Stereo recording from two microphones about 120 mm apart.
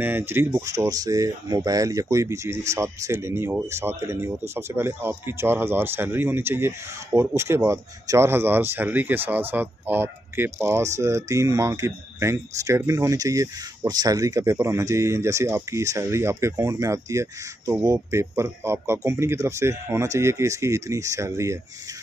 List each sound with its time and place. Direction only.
0.0 s speech: 15° right (ahead or behind)